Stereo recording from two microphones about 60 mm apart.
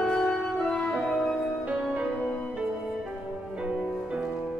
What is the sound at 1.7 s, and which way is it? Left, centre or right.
Music, right.